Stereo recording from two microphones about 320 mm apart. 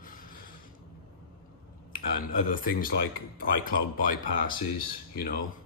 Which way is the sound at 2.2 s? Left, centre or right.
Left.